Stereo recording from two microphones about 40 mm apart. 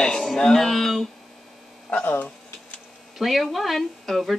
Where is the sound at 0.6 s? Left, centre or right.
Centre.